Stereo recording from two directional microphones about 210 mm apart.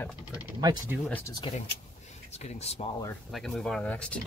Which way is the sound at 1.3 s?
25° left (ahead or behind).